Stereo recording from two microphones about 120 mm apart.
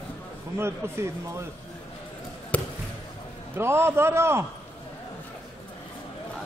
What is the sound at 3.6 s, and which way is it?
Speech, 20° right (ahead or behind).